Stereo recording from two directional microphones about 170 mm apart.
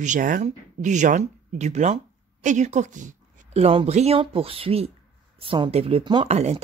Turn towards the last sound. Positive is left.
turn(degrees=-40)  # may be behind; listen again after turning